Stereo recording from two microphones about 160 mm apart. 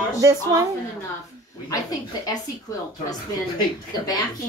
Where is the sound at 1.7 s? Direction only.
25° left (ahead or behind).